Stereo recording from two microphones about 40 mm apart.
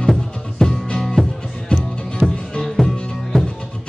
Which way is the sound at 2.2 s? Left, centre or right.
Centre.